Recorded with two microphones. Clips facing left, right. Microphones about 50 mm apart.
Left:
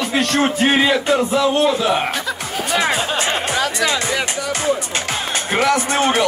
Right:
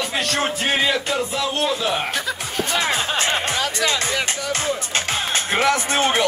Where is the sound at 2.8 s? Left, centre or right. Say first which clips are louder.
Left 3 dB; left.